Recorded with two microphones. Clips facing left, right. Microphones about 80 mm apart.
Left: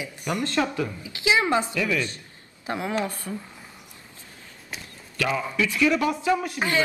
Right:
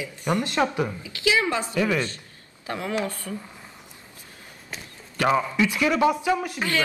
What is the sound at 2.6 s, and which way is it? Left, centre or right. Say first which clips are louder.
Speech: left 1 dB; left.